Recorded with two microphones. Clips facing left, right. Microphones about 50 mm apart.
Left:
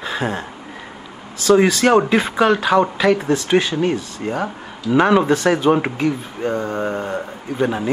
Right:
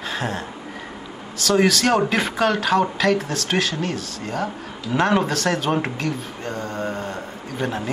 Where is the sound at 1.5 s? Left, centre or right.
Centre.